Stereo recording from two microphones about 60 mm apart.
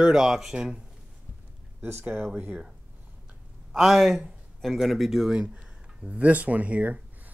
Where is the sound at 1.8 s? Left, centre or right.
Right.